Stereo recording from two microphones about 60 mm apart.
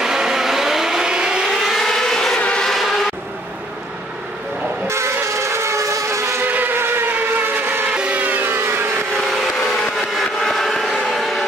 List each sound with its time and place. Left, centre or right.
0.0 s vehicle: centre
1.4 s vehicle: centre
1.8 s vehicle: centre
4.8 s vehicle: right
6.4 s vehicle: right
7.9 s music: centre
8.5 s vehicle: right
9.3 s vehicle: centre